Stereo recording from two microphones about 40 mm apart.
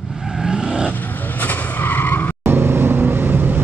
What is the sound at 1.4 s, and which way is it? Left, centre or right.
Vehicle, left.